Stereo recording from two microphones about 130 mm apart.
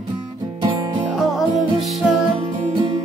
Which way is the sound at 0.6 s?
40° right (ahead or behind).